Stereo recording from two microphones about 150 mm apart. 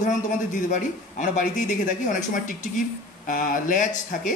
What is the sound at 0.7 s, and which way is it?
A man's voice, 55° left (ahead or behind).